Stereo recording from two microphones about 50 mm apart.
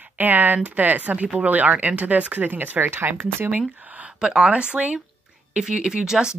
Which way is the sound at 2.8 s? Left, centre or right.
Right.